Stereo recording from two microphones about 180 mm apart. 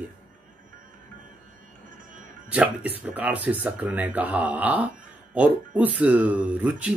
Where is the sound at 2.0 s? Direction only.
45° right (ahead or behind).